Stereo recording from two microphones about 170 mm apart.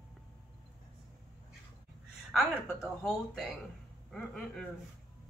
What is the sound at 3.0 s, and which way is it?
A woman's voice, 5° left (ahead or behind).